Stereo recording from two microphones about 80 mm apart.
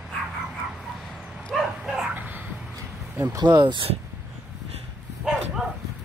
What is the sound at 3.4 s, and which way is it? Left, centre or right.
Speech, right.